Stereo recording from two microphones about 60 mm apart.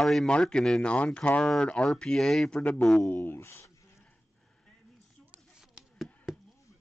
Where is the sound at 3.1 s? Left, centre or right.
Left.